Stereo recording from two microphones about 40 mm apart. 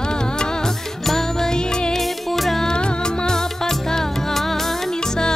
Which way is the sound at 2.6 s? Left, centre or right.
Left.